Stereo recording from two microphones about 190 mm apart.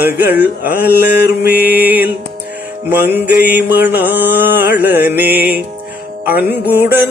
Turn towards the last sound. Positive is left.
turn(degrees=-10)  # may be behind; listen again after turning